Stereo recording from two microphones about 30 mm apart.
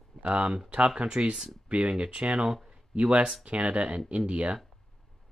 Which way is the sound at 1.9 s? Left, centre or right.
Right.